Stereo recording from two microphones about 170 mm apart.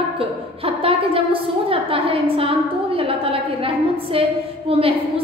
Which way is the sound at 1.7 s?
35° right (ahead or behind).